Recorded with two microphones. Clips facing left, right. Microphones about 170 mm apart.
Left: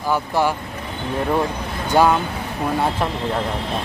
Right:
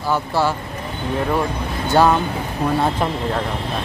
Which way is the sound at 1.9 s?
10° left (ahead or behind).